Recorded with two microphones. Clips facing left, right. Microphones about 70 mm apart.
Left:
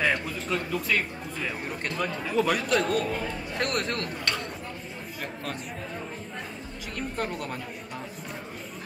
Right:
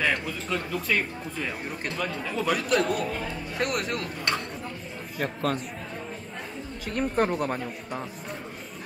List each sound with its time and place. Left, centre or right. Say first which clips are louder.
0.0 s a man's voice: even; centre
5.2 s speech: right 8 dB; right
7.0 s speech: right 7 dB; right